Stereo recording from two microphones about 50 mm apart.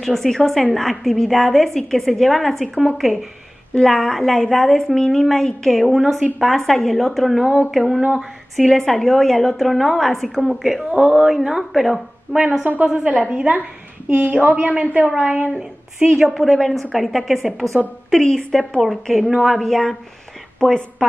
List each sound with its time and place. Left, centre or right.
0.0 s a woman's voice: centre
3.8 s a woman's voice: centre
7.8 s speech: centre
8.6 s a woman's voice: centre
10.8 s a woman's voice: centre
12.4 s a woman's voice: centre
16.3 s a woman's voice: centre
19.6 s a woman's voice: centre